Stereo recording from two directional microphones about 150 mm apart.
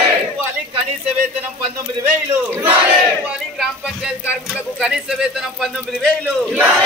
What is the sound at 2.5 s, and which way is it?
A man's voice, 10° right (ahead or behind).